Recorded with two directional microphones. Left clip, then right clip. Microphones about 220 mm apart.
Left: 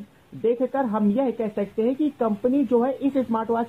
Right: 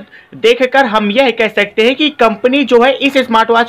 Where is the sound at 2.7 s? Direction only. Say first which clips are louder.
Right 13 dB; 30° right (ahead or behind).